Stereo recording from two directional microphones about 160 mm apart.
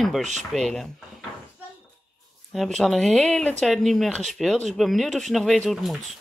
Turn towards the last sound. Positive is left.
turn(degrees=0)  # may be behind; listen again after turning